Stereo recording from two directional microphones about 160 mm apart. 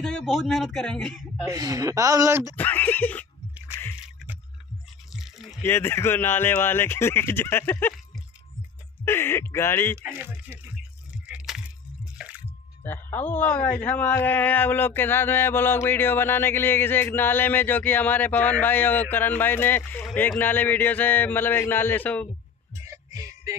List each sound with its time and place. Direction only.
0.0 s speech: centre (ahead or behind)
1.4 s speech: 20° right (ahead or behind)
2.5 s a man's voice: 10° left (ahead or behind)
5.1 s a sound: centre (ahead or behind)
5.6 s a man's voice: 15° left (ahead or behind)
9.0 s a man's voice: 15° left (ahead or behind)
10.1 s a sound: 10° right (ahead or behind)
12.8 s a man's voice: 10° left (ahead or behind)
22.8 s music: 20° right (ahead or behind)